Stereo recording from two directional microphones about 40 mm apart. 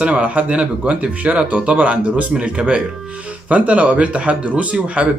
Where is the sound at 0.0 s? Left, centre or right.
Right.